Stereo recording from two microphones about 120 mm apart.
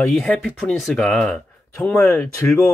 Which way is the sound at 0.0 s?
Centre (ahead or behind).